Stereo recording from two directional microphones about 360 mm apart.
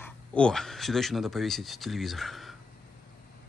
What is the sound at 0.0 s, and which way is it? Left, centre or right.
Speech, centre.